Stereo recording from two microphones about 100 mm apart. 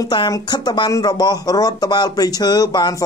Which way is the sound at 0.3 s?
45° left (ahead or behind).